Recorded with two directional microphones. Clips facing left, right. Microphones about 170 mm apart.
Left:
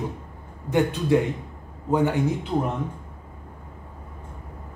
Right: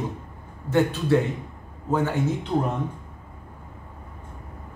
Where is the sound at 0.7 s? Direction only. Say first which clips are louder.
Even; 15° left (ahead or behind).